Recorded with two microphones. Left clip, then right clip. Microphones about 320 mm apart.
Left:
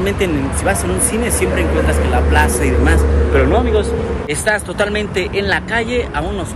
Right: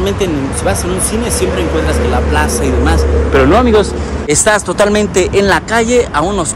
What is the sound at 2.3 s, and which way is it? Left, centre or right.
Speech, centre.